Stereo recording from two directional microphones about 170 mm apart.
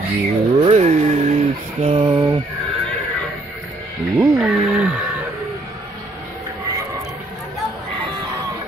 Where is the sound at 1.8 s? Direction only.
30° right (ahead or behind).